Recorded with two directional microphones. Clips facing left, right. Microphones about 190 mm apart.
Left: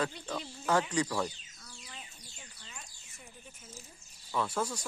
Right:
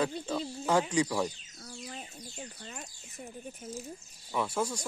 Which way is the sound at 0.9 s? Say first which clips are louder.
Right 3 dB; 15° right (ahead or behind).